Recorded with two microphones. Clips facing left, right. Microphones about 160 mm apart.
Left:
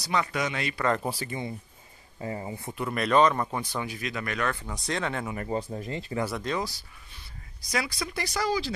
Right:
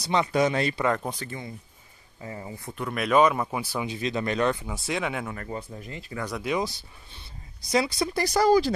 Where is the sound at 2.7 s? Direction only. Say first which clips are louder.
Right 1 dB; centre (ahead or behind).